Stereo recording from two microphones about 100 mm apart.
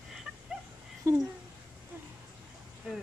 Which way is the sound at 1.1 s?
30° right (ahead or behind).